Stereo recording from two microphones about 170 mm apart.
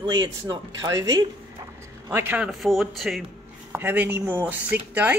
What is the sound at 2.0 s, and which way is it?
A man's voice, 15° right (ahead or behind).